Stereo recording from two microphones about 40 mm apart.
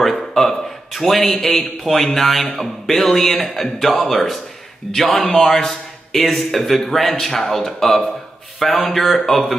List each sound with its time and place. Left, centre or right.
0.0 s a sound: centre
0.9 s speech: centre
1.2 s speech: left
1.5 s speech: centre
5.4 s speech: centre